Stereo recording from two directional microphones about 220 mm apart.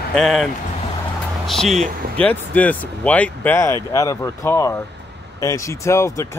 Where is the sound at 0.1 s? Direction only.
Centre (ahead or behind).